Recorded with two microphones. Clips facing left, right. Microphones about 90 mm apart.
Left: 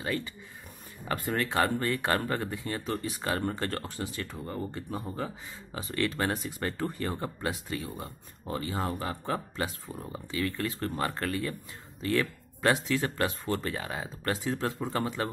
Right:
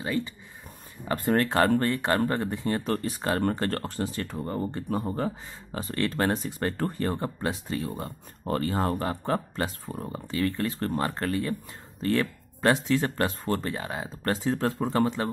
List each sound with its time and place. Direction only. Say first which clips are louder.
0.0 s speech: right 4 dB; 20° right (ahead or behind)
1.0 s speech: right 6 dB; 35° right (ahead or behind)
1.9 s speech: right 3 dB; 25° right (ahead or behind); by 3.2 s 45° right (ahead or behind)
3.2 s speech: right 4 dB; 35° right (ahead or behind)
7.2 s speech: right 3 dB; 25° right (ahead or behind)
7.7 s speech: right 5 dB; 40° right (ahead or behind)
8.5 s speech: right 6 dB; 50° right (ahead or behind); by 15.2 s 30° right (ahead or behind)